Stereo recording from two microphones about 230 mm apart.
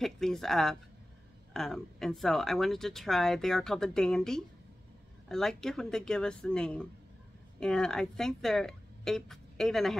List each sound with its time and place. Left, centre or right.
0.0 s speech: centre